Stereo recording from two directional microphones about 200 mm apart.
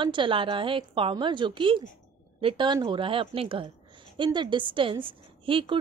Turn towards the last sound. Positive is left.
turn(degrees=-25)  # may be behind; listen again after turning